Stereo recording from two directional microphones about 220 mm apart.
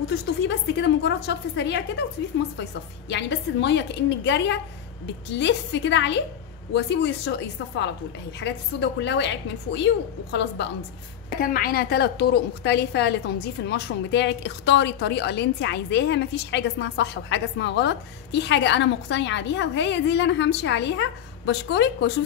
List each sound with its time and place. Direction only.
0.7 s a woman's voice: 55° left (ahead or behind)
8.4 s a woman's voice: 55° left (ahead or behind)
11.4 s a woman's voice: 40° left (ahead or behind)